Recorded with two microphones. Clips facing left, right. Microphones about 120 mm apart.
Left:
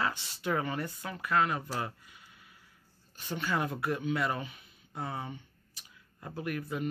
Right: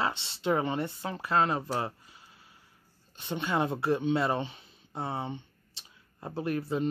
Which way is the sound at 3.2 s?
20° right (ahead or behind).